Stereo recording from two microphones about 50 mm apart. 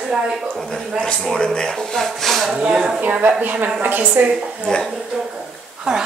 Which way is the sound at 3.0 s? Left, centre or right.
Right.